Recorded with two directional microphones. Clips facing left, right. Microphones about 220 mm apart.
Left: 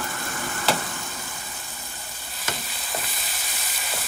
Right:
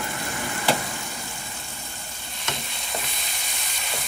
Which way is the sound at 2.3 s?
5° left (ahead or behind).